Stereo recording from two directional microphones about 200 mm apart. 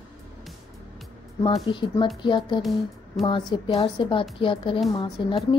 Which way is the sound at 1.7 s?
25° left (ahead or behind).